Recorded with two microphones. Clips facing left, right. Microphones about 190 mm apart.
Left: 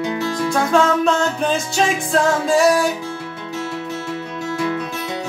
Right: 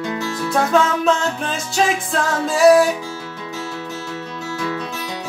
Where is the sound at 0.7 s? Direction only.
Centre (ahead or behind).